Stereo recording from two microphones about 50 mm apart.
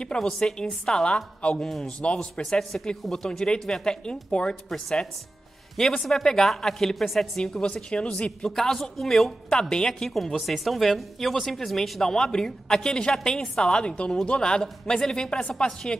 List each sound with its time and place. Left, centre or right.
0.0 s speech: centre
1.6 s speech: centre
1.9 s a man's voice: left
2.7 s speech: centre